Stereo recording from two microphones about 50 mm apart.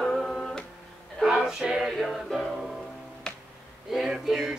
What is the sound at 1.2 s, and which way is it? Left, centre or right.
Music, centre.